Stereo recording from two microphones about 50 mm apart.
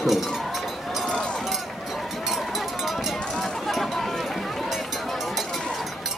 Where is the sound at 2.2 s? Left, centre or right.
Centre.